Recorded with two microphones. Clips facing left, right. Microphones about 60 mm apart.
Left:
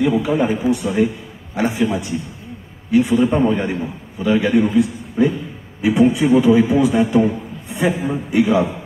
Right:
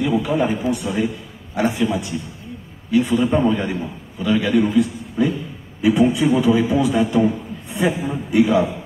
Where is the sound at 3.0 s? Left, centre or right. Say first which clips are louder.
Left 2 dB; centre.